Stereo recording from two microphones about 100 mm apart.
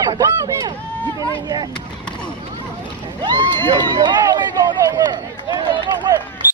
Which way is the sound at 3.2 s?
50° right (ahead or behind).